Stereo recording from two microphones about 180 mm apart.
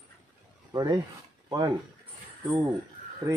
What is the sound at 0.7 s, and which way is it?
Speech, 20° right (ahead or behind).